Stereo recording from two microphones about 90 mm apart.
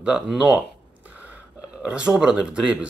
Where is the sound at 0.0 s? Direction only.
10° right (ahead or behind).